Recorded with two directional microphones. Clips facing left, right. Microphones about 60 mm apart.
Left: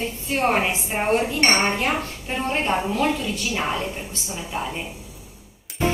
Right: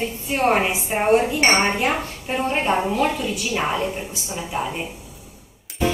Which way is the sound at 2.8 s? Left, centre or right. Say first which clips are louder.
Right 2 dB; right.